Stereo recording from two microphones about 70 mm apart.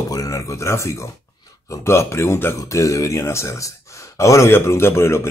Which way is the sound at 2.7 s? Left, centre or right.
Left.